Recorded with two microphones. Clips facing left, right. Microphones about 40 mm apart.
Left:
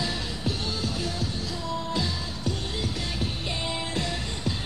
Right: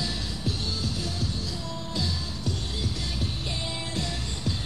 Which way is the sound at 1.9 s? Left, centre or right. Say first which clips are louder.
Left 2 dB; left.